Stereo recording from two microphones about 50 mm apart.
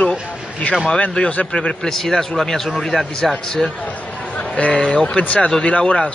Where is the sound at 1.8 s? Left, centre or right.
Centre.